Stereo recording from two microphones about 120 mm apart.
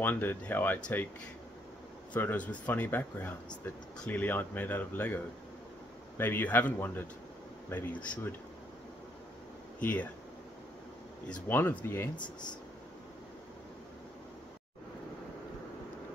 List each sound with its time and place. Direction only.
0.0 s speech: 15° left (ahead or behind)
2.1 s speech: 15° left (ahead or behind)
9.8 s speech: 15° left (ahead or behind)
11.4 s speech: 15° left (ahead or behind)